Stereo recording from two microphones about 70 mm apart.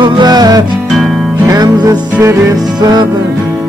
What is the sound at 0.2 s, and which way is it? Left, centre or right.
Music, right.